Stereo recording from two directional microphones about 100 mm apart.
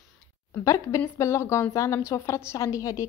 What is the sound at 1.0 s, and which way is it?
A woman's voice, 30° left (ahead or behind).